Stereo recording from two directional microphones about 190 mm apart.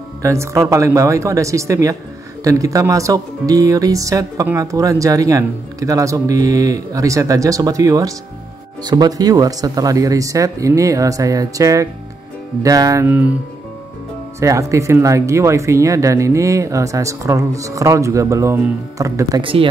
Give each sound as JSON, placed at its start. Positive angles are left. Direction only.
{"t": 0.2, "sound": "speech", "side_deg": -15}
{"t": 14.4, "sound": "speech", "side_deg": -15}
{"t": 19.4, "sound": "speech", "side_deg": -30}